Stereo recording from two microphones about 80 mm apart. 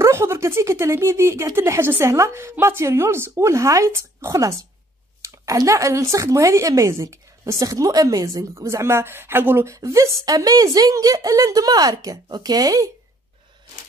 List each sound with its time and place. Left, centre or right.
0.0 s speech: right
9.8 s speech: right